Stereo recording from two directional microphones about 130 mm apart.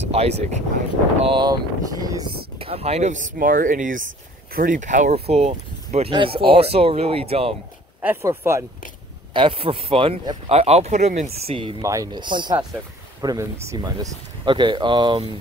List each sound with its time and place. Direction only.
0.0 s speech: 55° right (ahead or behind)
1.3 s speech: 30° right (ahead or behind)
2.6 s speech: 50° right (ahead or behind); by 5.1 s 75° right (ahead or behind)
5.1 s speech: 50° right (ahead or behind)
6.1 s speech: 45° right (ahead or behind)
8.0 s speech: 20° right (ahead or behind)
9.3 s speech: 40° right (ahead or behind)
11.8 s speech: 25° right (ahead or behind)
13.2 s speech: 25° right (ahead or behind)